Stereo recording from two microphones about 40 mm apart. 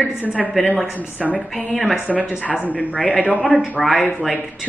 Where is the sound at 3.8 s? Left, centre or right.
Centre.